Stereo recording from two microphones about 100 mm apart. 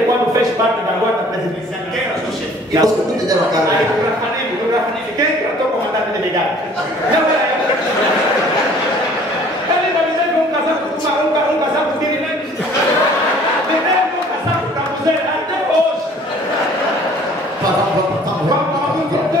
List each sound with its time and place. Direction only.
2.7 s a man's voice: 35° right (ahead or behind)